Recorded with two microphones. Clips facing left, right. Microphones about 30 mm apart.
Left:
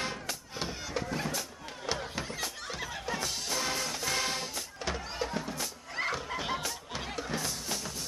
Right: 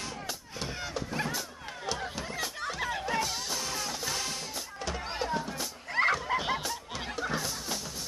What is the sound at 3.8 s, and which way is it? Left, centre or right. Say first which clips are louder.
Music: left 1 dB; centre.